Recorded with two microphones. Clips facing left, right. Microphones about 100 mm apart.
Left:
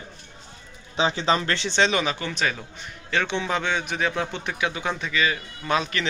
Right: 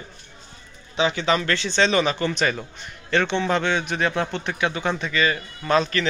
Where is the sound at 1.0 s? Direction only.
30° left (ahead or behind).